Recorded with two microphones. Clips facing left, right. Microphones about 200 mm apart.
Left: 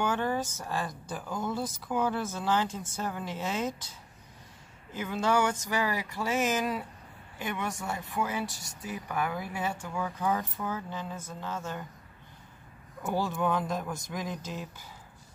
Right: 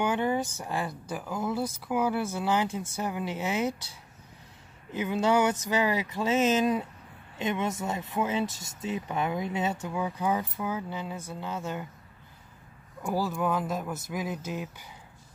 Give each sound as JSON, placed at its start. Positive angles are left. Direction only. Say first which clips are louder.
{"t": 0.0, "sound": "speech", "louder": "right 2 dB", "side_deg": -15}
{"t": 4.9, "sound": "speech", "louder": "right 3 dB", "side_deg": -15}
{"t": 13.0, "sound": "speech", "louder": "right 1 dB", "side_deg": 0}